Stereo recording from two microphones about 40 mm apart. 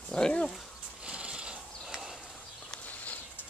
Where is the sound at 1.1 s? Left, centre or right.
Right.